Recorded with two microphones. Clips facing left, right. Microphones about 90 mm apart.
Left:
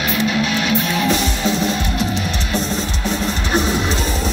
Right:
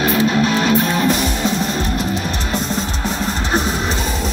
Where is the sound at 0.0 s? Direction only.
35° right (ahead or behind).